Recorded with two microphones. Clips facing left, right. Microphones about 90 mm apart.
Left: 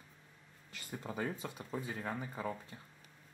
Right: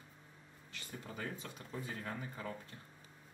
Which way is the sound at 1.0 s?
25° left (ahead or behind).